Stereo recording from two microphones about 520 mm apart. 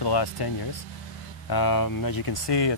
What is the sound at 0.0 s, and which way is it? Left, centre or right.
Speech, left.